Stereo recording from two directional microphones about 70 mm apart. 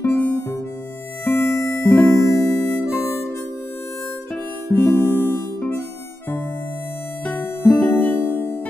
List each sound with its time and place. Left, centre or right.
0.0 s harmonica: left
1.2 s music: left
2.0 s harmonica: left
4.7 s music: left
7.2 s music: left